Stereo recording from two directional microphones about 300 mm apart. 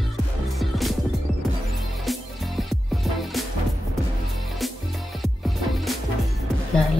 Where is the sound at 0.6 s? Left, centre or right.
Centre.